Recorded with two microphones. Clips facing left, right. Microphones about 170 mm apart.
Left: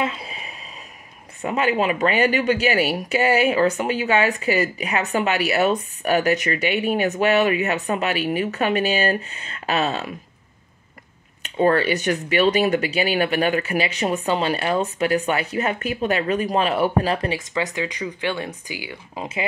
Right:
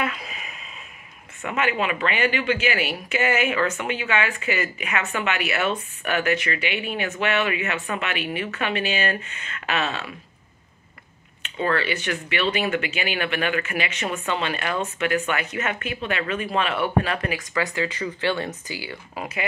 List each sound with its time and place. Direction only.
0.0 s a sound: 30° left (ahead or behind)
1.4 s speech: 35° left (ahead or behind)
11.4 s speech: 40° left (ahead or behind); by 19.2 s 15° left (ahead or behind)